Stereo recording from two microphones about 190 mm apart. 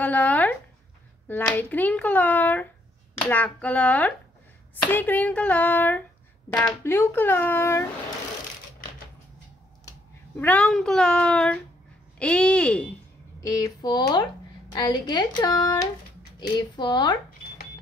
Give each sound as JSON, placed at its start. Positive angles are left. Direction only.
{"t": 0.0, "sound": "a sound", "side_deg": 10}
{"t": 1.2, "sound": "a child's voice", "side_deg": 10}
{"t": 9.8, "sound": "a child's voice", "side_deg": 10}
{"t": 13.4, "sound": "a woman's voice", "side_deg": 15}